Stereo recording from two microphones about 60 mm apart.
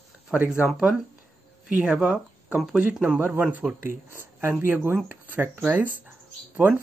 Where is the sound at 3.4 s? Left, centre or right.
Right.